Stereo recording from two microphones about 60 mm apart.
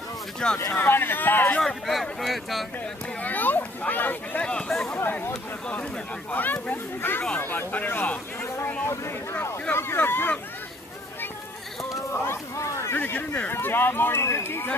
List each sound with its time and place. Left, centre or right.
0.4 s speech: centre
0.7 s speech: left
1.6 s speech: centre
3.2 s speech: left
4.5 s speech: centre
4.8 s speech: left
6.3 s speech: left
9.8 s speech: left
12.5 s speech: left
12.9 s speech: left